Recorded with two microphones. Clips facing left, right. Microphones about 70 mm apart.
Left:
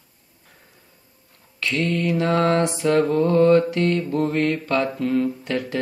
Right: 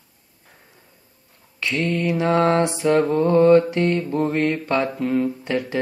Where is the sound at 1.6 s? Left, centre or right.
Centre.